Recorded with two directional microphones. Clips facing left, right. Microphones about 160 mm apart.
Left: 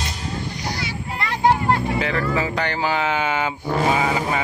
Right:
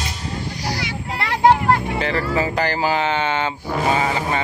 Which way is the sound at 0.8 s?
80° right.